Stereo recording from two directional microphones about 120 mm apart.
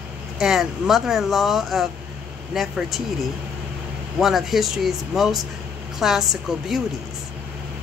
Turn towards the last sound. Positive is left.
turn(degrees=-5)  # may be behind; listen again after turning